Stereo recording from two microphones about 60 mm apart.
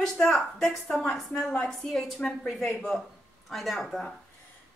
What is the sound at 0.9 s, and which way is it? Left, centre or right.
A woman's voice, centre.